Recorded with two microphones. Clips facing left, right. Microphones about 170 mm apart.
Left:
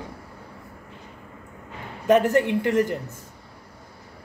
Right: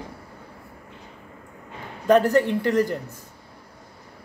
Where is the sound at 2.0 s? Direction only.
15° left (ahead or behind).